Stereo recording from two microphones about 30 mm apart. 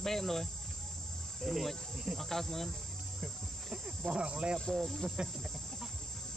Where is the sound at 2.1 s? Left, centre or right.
Centre.